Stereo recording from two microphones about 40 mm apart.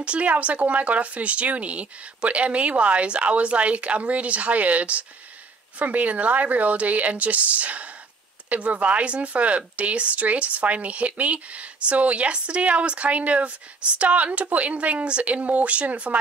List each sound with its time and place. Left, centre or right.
0.0 s speech: right